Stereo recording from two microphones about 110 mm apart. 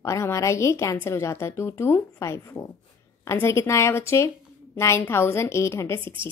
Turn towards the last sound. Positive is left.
turn(degrees=25)  # may be behind; listen again after turning